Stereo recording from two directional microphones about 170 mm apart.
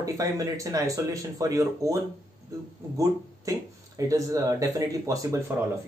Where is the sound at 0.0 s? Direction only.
20° right (ahead or behind).